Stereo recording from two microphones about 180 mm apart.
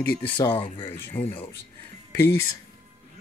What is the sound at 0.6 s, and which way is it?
Speech, 30° left (ahead or behind).